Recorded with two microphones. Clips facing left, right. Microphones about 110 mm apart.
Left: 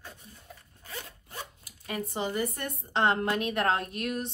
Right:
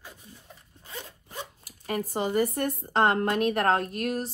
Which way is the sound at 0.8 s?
25° right (ahead or behind).